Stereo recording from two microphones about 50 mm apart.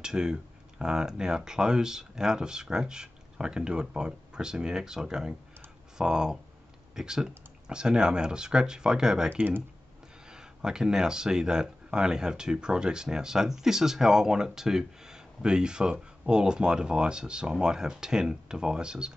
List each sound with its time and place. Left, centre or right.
0.0 s speech: centre
9.3 s speech: right
10.3 s speech: centre